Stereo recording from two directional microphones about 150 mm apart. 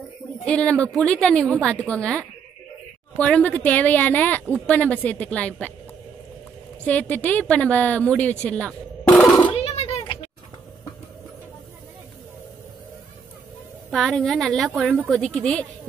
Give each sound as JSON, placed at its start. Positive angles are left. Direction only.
{"t": 0.5, "sound": "a woman's voice", "side_deg": 5}
{"t": 6.9, "sound": "speech", "side_deg": 10}
{"t": 9.5, "sound": "a sound", "side_deg": 35}
{"t": 13.8, "sound": "a woman's voice", "side_deg": 0}